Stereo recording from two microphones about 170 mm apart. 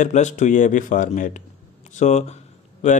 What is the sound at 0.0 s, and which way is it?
Speech, 45° left (ahead or behind).